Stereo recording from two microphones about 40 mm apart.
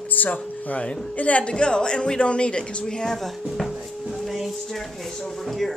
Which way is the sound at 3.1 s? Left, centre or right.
Centre.